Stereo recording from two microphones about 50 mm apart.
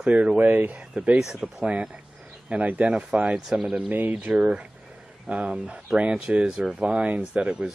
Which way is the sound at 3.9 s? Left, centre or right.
Right.